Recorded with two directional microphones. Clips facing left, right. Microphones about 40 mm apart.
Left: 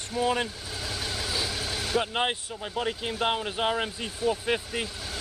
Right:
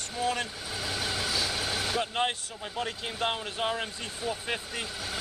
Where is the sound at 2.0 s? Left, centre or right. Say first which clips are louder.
Left 5 dB; centre.